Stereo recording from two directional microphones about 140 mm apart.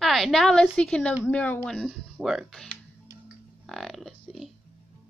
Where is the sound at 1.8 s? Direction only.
Centre (ahead or behind).